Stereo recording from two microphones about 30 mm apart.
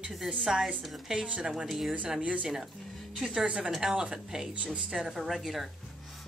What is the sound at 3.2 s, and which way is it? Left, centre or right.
Speech, right.